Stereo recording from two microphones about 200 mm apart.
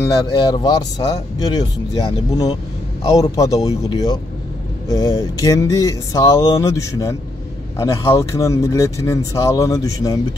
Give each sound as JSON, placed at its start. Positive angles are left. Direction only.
{"t": 0.2, "sound": "speech", "side_deg": 20}